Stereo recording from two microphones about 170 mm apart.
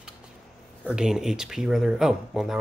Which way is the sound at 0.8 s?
5° right (ahead or behind).